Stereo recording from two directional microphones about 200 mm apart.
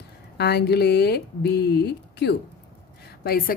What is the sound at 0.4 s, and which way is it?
Speech, 55° left (ahead or behind).